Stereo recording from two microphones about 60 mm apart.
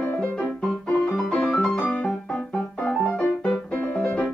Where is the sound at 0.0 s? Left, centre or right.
Left.